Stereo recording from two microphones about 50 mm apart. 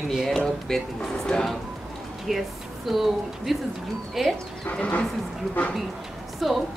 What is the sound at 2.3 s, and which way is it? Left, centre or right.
A woman's voice, centre.